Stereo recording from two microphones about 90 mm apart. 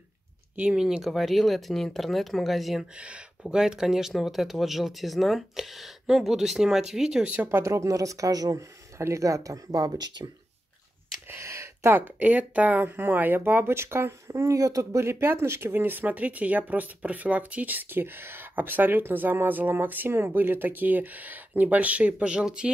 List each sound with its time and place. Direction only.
0.6 s speech: 10° right (ahead or behind)
3.0 s speech: 10° right (ahead or behind)
7.6 s speech: 35° right (ahead or behind); by 10.3 s 50° right (ahead or behind)
11.2 s speech: 30° right (ahead or behind); by 22.7 s 10° right (ahead or behind)